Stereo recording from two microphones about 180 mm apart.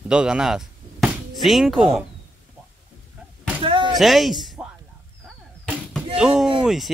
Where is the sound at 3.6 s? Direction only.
30° right (ahead or behind).